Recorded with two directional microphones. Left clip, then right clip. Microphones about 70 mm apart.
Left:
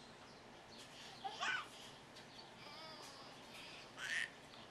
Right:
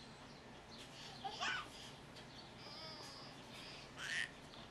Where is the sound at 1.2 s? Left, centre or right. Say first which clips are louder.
Left 1 dB; centre.